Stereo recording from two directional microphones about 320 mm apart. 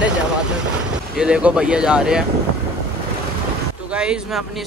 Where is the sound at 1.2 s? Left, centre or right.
Centre.